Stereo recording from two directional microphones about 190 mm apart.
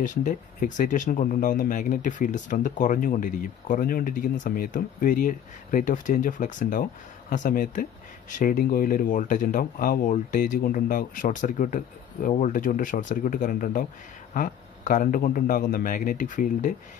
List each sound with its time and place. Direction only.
0.0 s speech: 40° left (ahead or behind)